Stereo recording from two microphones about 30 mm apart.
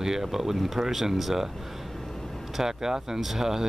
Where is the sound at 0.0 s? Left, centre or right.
Centre.